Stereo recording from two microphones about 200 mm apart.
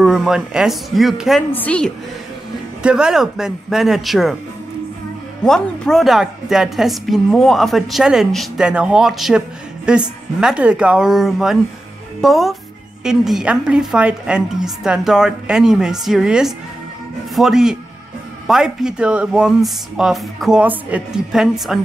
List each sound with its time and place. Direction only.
0.0 s a woman's voice: centre (ahead or behind)
2.8 s a woman's voice: 5° right (ahead or behind)
5.4 s a woman's voice: centre (ahead or behind)